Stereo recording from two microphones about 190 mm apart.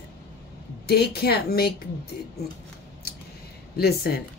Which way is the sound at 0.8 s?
55° left (ahead or behind).